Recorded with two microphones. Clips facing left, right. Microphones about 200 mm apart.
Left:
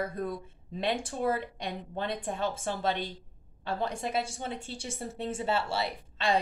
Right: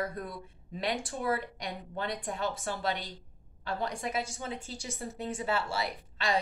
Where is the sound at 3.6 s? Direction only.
25° left (ahead or behind).